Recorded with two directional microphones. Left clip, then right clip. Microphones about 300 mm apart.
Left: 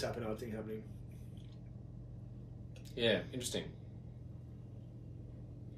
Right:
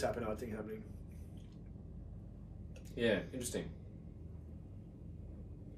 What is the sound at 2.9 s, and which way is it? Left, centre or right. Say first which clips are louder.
Speech: left 1 dB; centre.